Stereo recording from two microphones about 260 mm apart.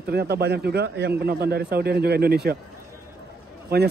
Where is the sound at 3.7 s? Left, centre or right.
Right.